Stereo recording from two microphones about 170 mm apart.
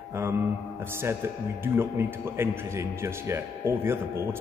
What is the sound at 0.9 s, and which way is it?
Speech, 15° right (ahead or behind).